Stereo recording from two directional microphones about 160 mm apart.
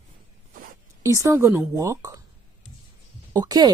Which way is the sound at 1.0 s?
20° right (ahead or behind).